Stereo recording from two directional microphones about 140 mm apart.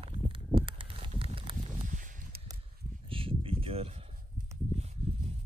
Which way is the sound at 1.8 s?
70° right (ahead or behind).